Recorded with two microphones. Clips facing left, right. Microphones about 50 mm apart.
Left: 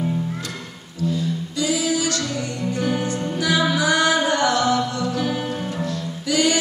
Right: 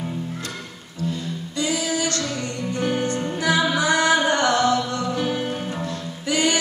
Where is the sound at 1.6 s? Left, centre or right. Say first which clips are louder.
Left 2 dB; right.